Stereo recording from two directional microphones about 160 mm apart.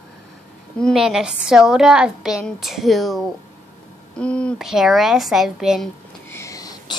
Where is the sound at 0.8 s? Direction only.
Centre (ahead or behind).